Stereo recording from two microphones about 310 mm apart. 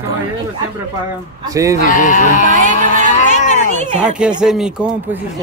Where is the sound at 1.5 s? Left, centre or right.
Centre.